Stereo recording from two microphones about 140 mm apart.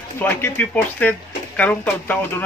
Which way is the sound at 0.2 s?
15° left (ahead or behind).